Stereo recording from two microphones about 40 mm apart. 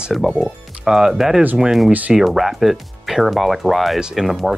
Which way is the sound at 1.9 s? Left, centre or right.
Right.